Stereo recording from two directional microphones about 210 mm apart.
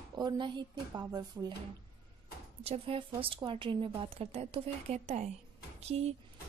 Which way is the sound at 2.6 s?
25° right (ahead or behind).